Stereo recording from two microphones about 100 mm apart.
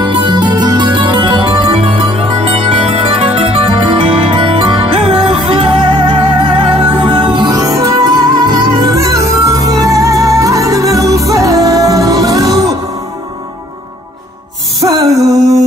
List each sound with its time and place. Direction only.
0.2 s music: 50° right (ahead or behind)
14.8 s music: 40° right (ahead or behind)